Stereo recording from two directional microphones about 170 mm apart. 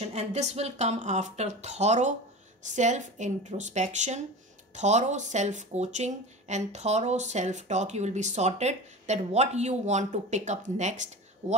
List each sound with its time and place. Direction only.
0.0 s speech: 40° right (ahead or behind)